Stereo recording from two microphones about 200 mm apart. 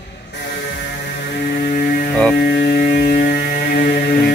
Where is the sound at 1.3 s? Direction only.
55° left (ahead or behind).